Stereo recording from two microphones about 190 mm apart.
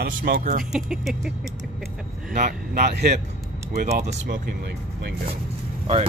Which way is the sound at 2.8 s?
60° right (ahead or behind).